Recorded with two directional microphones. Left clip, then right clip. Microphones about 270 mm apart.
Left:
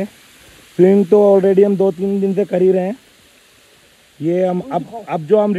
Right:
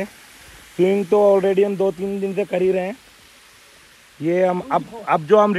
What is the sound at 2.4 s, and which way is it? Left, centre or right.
Speech, centre.